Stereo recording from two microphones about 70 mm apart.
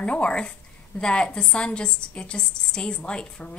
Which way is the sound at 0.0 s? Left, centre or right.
Centre.